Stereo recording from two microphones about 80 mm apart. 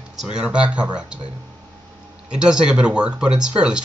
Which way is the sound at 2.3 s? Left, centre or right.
Centre.